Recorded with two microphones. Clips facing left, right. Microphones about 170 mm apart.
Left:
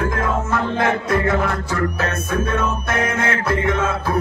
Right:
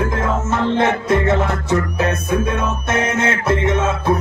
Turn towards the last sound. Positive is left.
turn(degrees=-20)  # may be behind; listen again after turning